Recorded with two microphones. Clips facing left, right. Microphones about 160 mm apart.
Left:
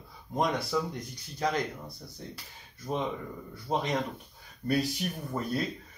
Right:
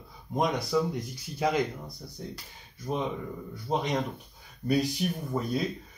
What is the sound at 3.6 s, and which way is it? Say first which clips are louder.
Speech: right 1 dB; centre (ahead or behind).